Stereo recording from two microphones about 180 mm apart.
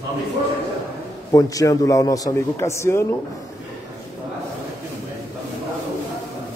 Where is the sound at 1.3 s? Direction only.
20° left (ahead or behind).